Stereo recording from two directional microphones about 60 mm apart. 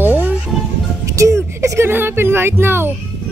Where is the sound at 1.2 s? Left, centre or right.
Right.